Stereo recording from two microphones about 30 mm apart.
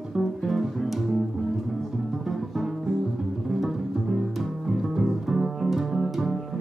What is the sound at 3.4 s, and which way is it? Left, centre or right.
Music, centre.